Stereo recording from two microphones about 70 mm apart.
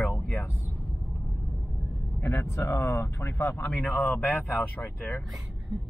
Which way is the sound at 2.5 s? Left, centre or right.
Left.